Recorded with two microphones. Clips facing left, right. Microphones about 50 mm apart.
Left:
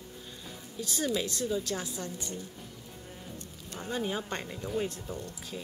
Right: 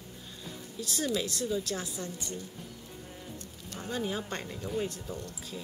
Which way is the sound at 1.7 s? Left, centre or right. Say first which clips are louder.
Left 1 dB; left.